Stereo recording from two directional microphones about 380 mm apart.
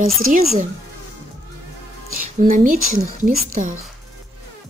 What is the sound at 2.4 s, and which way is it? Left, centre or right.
A woman's voice, right.